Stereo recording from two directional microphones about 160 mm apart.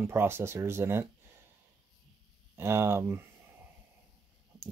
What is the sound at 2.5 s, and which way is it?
Speech, 15° right (ahead or behind).